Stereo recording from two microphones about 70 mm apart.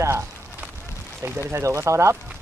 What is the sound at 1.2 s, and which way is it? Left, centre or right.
Speech, right.